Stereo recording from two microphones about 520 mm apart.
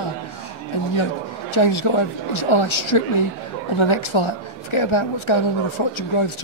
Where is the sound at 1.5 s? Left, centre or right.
Left.